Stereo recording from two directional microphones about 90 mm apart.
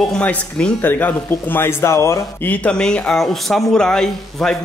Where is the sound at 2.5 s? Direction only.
10° left (ahead or behind).